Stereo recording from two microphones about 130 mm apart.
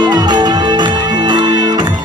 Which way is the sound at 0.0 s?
35° right (ahead or behind).